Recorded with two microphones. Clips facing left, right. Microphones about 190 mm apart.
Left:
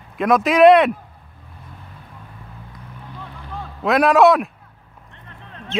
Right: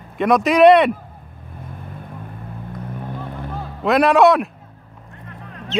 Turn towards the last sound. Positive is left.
turn(degrees=50)  # may be behind; listen again after turning